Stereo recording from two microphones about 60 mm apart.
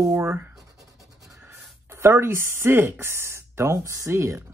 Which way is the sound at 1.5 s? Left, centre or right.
Right.